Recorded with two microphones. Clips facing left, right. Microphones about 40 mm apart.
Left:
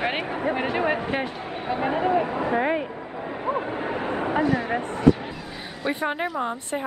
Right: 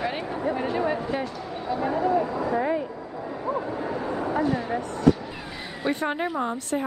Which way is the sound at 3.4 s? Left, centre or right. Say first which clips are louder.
Left 2 dB; left.